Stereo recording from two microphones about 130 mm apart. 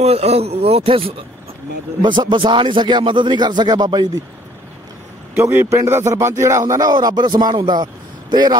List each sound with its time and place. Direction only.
0.0 s speech: 55° right (ahead or behind)
2.0 s speech: 35° right (ahead or behind)
5.3 s a man's voice: 20° right (ahead or behind); by 8.5 s 35° right (ahead or behind)